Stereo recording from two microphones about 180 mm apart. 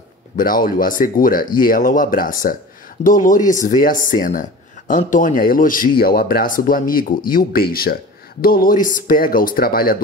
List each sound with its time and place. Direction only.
0.4 s speech: 50° left (ahead or behind)